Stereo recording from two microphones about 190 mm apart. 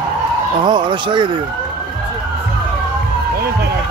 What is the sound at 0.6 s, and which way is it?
Bow-wow, 25° right (ahead or behind).